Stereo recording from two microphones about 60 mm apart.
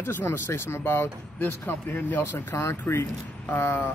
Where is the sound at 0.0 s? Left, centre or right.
Left.